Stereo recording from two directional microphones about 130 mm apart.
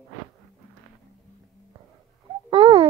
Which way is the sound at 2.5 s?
40° right (ahead or behind).